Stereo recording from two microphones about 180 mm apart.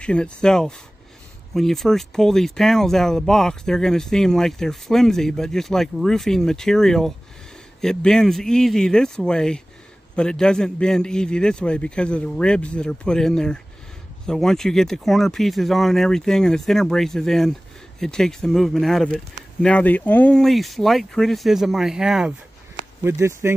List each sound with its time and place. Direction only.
0.0 s speech: 5° left (ahead or behind)
23.0 s speech: 15° right (ahead or behind)